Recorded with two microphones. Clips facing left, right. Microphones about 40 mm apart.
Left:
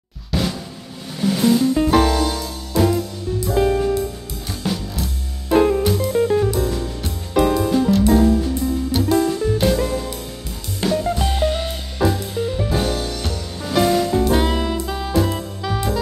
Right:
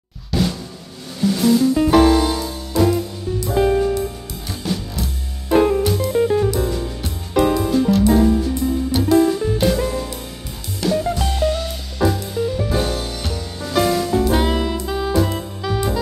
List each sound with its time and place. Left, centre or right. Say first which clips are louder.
0.3 s drum: right 2 dB; centre
1.2 s music: right 1 dB; centre
1.8 s music: right 3 dB; centre
2.8 s music: right 1 dB; centre
10.9 s music: right 1 dB; centre
11.3 s music: even; left
12.0 s music: right 1 dB; centre
14.2 s saxophone: even; centre